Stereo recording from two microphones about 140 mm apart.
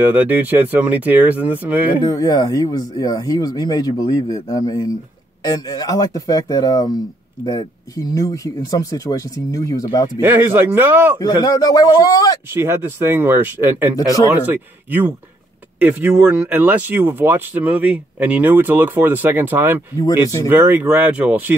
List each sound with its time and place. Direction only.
0.0 s speech: 10° right (ahead or behind)
2.0 s speech: 25° left (ahead or behind)
10.2 s speech: 15° right (ahead or behind)
11.1 s speech: 30° left (ahead or behind)
12.5 s speech: 15° right (ahead or behind)